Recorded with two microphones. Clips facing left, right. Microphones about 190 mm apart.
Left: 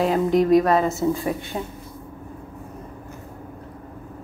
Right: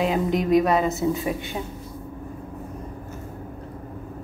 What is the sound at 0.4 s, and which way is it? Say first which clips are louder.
A woman's voice: left 3 dB; 20° right (ahead or behind).